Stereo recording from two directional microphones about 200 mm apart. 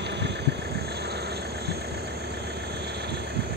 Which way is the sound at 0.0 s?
60° right (ahead or behind).